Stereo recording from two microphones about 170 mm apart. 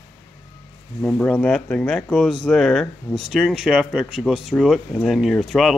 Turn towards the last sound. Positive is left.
turn(degrees=0)  # may be behind; listen again after turning